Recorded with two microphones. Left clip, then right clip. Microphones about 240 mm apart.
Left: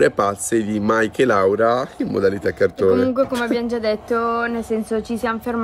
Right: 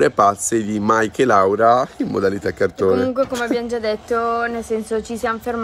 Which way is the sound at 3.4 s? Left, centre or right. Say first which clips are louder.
Even; left.